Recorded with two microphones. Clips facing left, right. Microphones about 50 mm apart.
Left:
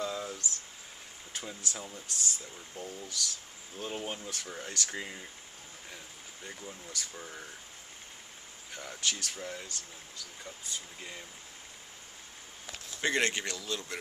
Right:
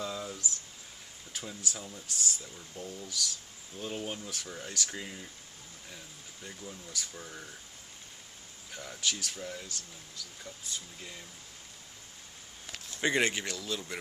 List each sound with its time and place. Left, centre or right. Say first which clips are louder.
0.0 s a sound: left 1 dB; centre
1.8 s speech: even; centre
6.4 s speech: even; centre
8.7 s speech: even; centre
11.0 s speech: left 2 dB; centre
13.0 s speech: right 1 dB; centre